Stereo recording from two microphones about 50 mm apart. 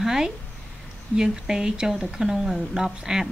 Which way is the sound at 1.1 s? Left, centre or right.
Centre.